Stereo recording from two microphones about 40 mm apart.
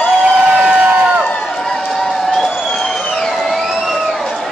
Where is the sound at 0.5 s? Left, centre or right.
Centre.